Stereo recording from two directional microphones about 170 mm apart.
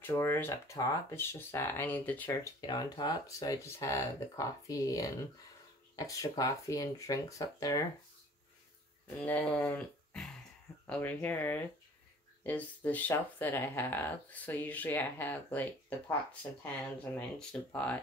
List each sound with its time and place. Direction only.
0.0 s speech: 15° left (ahead or behind)
2.6 s speech: 25° left (ahead or behind)
9.2 s speech: 10° left (ahead or behind)
17.0 s speech: 5° left (ahead or behind)